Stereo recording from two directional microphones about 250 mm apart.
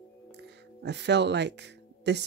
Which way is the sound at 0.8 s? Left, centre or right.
Right.